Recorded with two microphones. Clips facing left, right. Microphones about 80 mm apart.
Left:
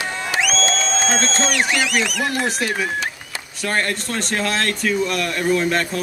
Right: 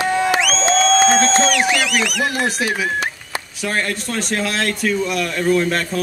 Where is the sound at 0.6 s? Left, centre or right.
Right.